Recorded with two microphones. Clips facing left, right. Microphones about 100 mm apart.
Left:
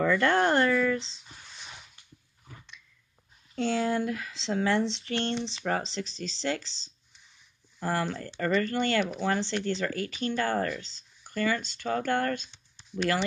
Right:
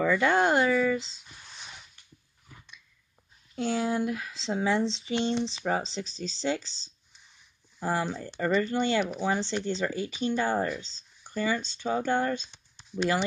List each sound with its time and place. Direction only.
0.0 s speech: 5° right (ahead or behind)
3.5 s speech: 10° right (ahead or behind)